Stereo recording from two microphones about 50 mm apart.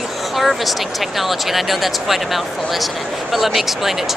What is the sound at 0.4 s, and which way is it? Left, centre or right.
Speech, centre.